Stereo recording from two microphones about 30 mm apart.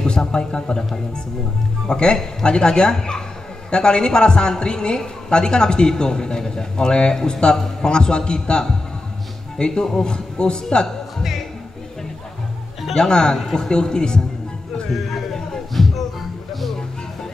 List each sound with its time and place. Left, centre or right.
0.0 s a sound: left
1.9 s a man's voice: left
7.5 s a man's voice: centre
7.9 s a man's voice: left
12.9 s a man's voice: left
13.4 s a man's voice: centre
13.7 s a man's voice: left
15.8 s music: centre